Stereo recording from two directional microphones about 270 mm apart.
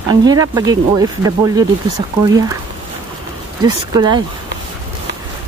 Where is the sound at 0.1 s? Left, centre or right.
Centre.